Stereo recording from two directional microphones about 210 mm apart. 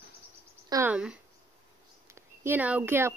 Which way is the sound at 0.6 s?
15° right (ahead or behind).